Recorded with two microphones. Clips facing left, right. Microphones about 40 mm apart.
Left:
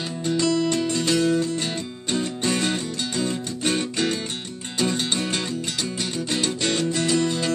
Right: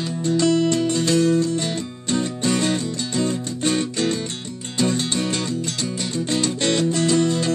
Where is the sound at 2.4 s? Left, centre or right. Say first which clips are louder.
Right 3 dB; left.